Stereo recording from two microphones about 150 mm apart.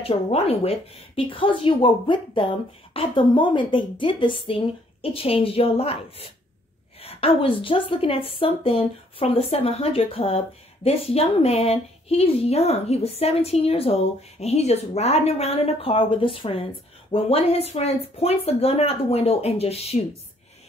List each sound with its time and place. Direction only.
0.0 s a woman's voice: 40° left (ahead or behind)